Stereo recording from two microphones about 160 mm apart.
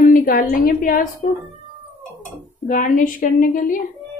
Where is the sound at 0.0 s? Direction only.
60° left (ahead or behind).